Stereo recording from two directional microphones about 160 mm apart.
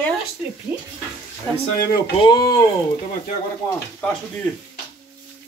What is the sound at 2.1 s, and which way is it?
Speech, 25° left (ahead or behind).